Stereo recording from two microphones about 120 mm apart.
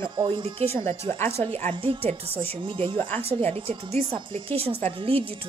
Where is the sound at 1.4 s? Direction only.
60° right (ahead or behind).